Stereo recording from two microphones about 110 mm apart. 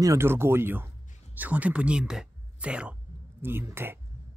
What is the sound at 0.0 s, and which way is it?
Speech, 25° right (ahead or behind).